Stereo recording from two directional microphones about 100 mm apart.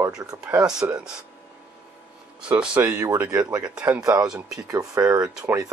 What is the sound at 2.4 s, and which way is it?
Speech, 10° right (ahead or behind).